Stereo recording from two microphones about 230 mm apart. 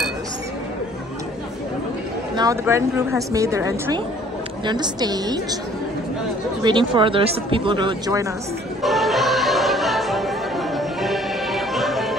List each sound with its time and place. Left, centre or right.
2.3 s a woman's voice: centre
6.6 s speech: right
8.8 s music: centre